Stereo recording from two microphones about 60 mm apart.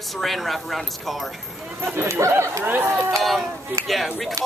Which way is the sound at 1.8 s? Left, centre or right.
Right.